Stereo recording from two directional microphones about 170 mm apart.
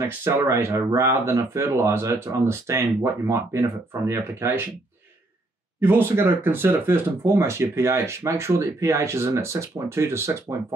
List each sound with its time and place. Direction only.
0.0 s speech: 15° right (ahead or behind)
5.8 s speech: 15° right (ahead or behind)